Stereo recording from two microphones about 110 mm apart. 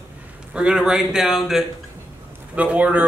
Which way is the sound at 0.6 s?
5° right (ahead or behind).